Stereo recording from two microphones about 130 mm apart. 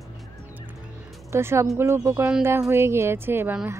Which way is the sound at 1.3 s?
20° right (ahead or behind).